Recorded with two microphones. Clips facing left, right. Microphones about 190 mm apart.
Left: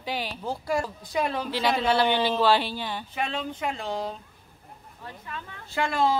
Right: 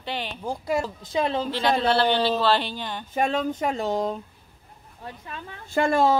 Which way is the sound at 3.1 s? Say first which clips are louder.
Right 10 dB; 45° right (ahead or behind).